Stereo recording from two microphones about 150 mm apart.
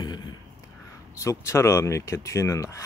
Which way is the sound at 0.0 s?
30° left (ahead or behind).